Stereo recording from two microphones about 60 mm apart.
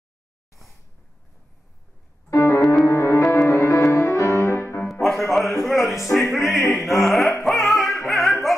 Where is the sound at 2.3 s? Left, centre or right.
Left.